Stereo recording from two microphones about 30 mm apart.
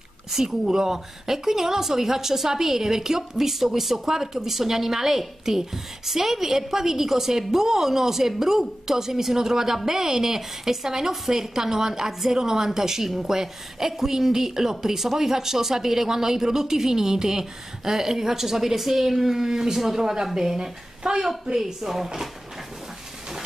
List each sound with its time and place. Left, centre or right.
0.3 s a woman's voice: centre